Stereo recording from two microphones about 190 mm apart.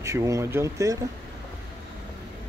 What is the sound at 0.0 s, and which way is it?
Speech, 15° right (ahead or behind).